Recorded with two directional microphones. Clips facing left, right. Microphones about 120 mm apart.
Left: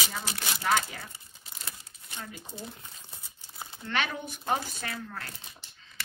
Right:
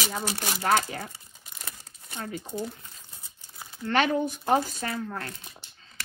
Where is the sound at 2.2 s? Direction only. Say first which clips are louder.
Right 9 dB; 55° right (ahead or behind).